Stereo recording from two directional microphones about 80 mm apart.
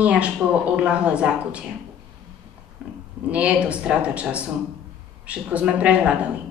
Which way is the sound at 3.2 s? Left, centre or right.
Centre.